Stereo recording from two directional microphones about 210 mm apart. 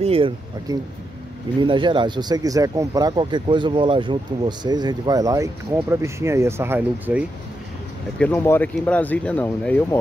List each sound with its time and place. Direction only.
0.0 s speech: 25° right (ahead or behind); by 7.2 s 10° right (ahead or behind)
8.2 s speech: 10° left (ahead or behind)